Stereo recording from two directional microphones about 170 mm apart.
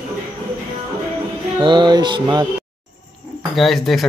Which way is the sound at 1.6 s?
25° right (ahead or behind).